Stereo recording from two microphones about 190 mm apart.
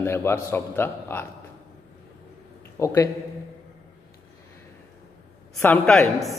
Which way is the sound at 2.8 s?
15° left (ahead or behind).